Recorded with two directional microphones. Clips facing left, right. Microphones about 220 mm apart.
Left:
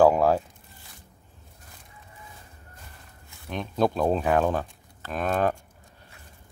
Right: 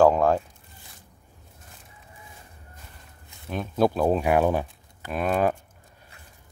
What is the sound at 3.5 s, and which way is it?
Speech, 5° right (ahead or behind).